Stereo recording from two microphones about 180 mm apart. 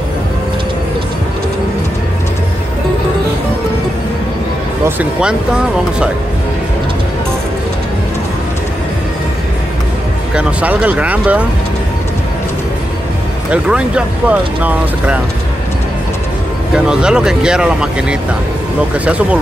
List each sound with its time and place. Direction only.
4.8 s speech: 10° right (ahead or behind)
10.3 s speech: 10° right (ahead or behind)
13.5 s speech: 5° right (ahead or behind)
16.7 s speech: 5° right (ahead or behind)